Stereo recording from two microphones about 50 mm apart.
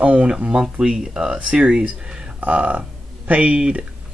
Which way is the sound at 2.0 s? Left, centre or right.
Centre.